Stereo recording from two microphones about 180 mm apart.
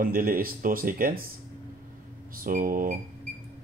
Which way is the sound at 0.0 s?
50° right (ahead or behind).